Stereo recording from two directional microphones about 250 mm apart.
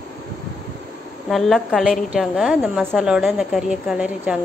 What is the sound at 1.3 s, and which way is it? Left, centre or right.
A woman's voice, centre.